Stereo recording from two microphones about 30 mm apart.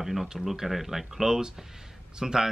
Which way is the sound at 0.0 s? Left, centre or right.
Centre.